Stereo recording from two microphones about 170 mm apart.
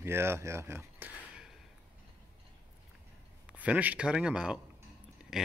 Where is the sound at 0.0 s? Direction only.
15° right (ahead or behind).